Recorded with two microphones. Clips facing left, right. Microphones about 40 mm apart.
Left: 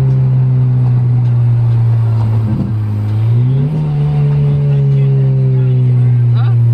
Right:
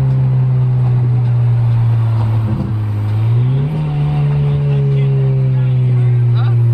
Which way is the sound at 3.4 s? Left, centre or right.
Centre.